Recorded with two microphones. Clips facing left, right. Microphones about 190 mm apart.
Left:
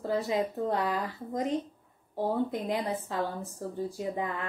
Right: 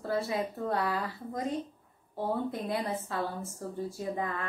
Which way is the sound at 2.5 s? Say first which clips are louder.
Left 2 dB; 15° left (ahead or behind).